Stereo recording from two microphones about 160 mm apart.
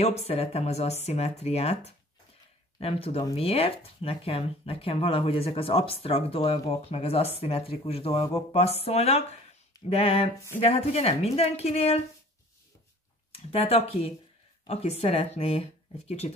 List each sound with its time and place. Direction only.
0.0 s speech: 40° left (ahead or behind)
13.5 s speech: 40° left (ahead or behind)